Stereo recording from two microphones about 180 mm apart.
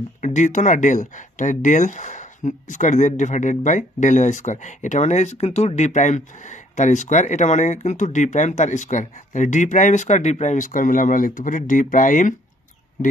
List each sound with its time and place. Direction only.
0.2 s speech: 40° left (ahead or behind)